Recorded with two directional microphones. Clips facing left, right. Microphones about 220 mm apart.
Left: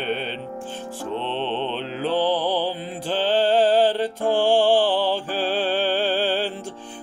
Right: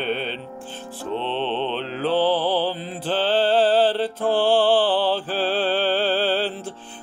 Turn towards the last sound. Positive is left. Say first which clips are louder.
# right 1 dB
turn(degrees=10)  # may be behind; listen again after turning